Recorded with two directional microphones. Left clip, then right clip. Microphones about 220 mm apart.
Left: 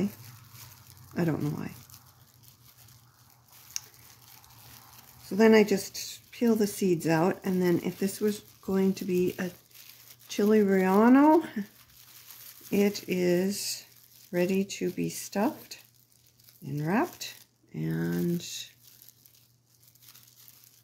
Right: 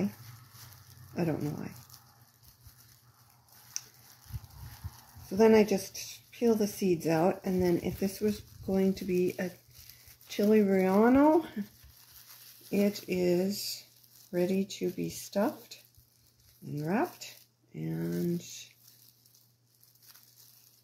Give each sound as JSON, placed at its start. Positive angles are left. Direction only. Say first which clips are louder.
{"t": 1.1, "sound": "speech", "louder": "left 2 dB", "side_deg": 45}
{"t": 5.4, "sound": "speech", "louder": "left 2 dB", "side_deg": 45}
{"t": 12.7, "sound": "speech", "louder": "left 3 dB", "side_deg": 45}
{"t": 16.8, "sound": "speech", "louder": "left 3 dB", "side_deg": 50}